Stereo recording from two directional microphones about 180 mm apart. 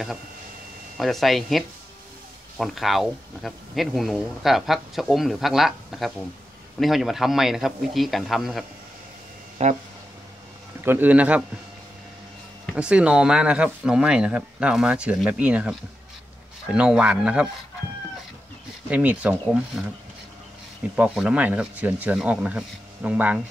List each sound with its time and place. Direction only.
0.9 s speech: centre (ahead or behind)
9.6 s a sound: 35° right (ahead or behind)
10.8 s speech: 10° right (ahead or behind)
12.7 s speech: 5° right (ahead or behind)
16.7 s speech: 5° right (ahead or behind)
18.9 s speech: 10° right (ahead or behind)
20.9 s speech: 5° right (ahead or behind)